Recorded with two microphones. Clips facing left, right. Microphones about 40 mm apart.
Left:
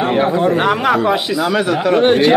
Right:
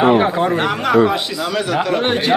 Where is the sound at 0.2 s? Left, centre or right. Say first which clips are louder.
Left 2 dB; centre.